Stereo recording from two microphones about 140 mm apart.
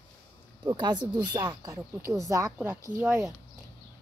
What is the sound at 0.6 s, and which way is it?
Speech, 30° right (ahead or behind).